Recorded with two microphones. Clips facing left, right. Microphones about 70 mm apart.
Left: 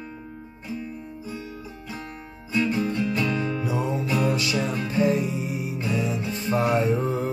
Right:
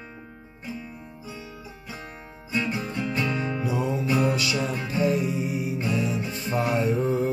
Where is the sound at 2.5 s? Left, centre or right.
Centre.